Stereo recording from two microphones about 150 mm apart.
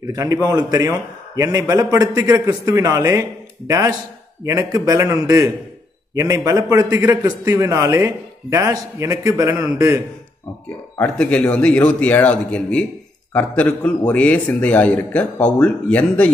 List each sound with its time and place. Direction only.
0.0 s a man's voice: 20° right (ahead or behind)
11.0 s a man's voice: 10° left (ahead or behind)